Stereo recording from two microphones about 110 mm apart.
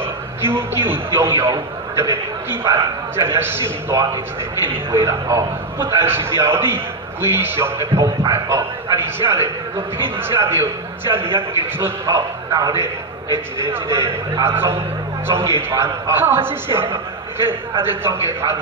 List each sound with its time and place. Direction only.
0.0 s a man's voice: 20° right (ahead or behind)
8.0 s a man's voice: 35° right (ahead or behind)
11.1 s a man's voice: 55° right (ahead or behind)
11.8 s a man's voice: 30° right (ahead or behind)
17.8 s a man's voice: 25° right (ahead or behind)